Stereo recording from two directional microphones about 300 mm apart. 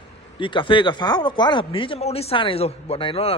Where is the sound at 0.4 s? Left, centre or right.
Centre.